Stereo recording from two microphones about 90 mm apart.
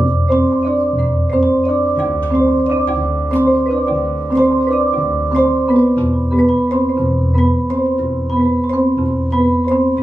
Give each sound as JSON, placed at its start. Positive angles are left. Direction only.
{"t": 2.3, "sound": "music", "side_deg": -20}